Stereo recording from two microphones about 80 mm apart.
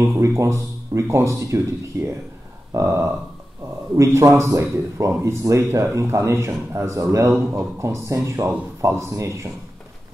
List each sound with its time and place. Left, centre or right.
0.0 s a man's voice: right